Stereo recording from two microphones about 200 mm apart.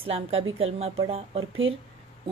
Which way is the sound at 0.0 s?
30° right (ahead or behind).